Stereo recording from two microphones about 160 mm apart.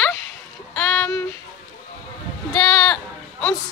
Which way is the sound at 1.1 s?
20° left (ahead or behind).